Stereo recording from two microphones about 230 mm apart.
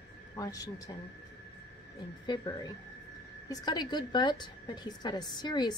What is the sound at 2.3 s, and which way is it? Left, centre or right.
A woman's voice, centre.